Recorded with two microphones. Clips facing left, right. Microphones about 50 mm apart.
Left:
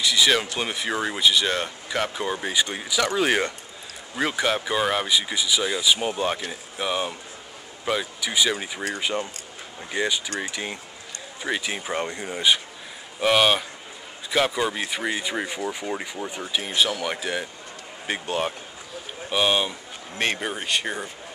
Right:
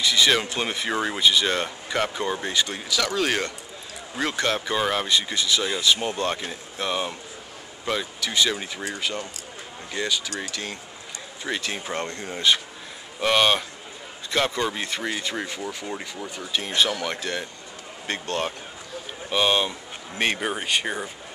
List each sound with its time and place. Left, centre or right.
0.0 s speech: centre
8.9 s speech: left
13.2 s speech: centre
16.6 s speech: centre